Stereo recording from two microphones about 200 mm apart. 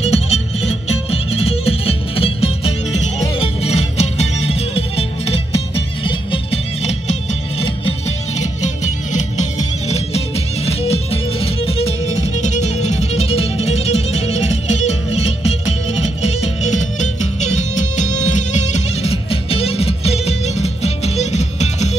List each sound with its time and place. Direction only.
0.0 s music: 30° left (ahead or behind)
8.4 s music: 35° left (ahead or behind)